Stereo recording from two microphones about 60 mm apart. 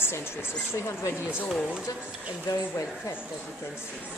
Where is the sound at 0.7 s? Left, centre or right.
Left.